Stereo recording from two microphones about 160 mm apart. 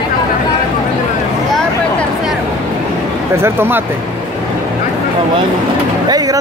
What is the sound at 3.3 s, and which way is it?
Speech, 15° right (ahead or behind).